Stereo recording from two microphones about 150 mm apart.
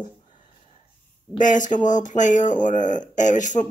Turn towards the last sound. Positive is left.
turn(degrees=55)  # may be behind; listen again after turning